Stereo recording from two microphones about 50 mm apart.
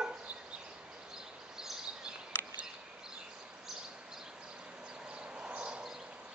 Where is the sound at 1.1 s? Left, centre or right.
Centre.